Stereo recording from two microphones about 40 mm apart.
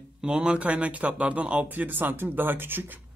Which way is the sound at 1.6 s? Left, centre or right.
Right.